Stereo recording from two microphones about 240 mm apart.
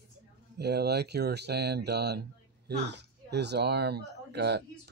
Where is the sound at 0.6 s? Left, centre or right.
Right.